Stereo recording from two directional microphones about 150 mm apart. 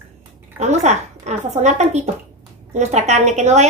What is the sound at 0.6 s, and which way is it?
Speech, 50° right (ahead or behind).